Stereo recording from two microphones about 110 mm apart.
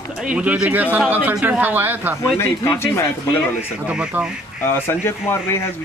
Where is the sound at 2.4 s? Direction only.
20° left (ahead or behind).